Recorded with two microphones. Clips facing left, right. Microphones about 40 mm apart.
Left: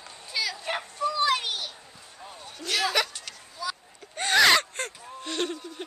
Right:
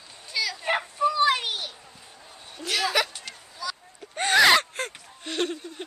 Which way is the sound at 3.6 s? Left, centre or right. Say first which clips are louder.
Left 1 dB; centre.